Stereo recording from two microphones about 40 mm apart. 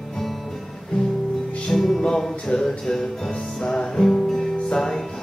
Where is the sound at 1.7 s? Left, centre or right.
Centre.